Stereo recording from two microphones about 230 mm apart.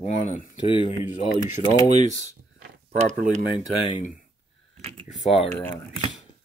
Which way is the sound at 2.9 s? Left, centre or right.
Right.